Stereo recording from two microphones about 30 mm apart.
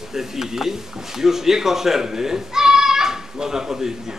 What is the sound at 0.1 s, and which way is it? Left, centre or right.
Speech, centre.